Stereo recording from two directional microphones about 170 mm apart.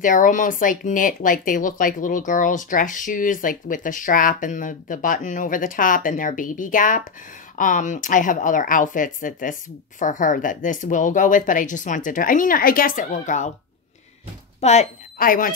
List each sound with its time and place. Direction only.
0.0 s speech: 50° left (ahead or behind)
14.6 s a woman's voice: 40° left (ahead or behind)